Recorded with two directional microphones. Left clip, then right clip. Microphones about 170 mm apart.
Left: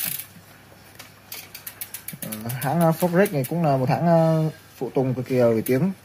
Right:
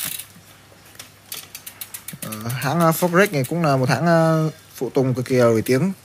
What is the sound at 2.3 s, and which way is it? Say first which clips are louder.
Speech: right 2 dB; 40° right (ahead or behind).